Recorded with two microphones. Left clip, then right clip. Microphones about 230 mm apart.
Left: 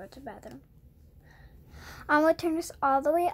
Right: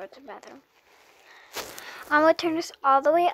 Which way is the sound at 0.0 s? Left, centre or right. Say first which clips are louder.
Right 3 dB; centre.